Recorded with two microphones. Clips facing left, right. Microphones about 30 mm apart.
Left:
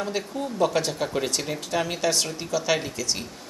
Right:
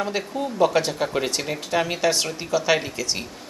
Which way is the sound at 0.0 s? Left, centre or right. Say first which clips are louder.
Right 3 dB; centre.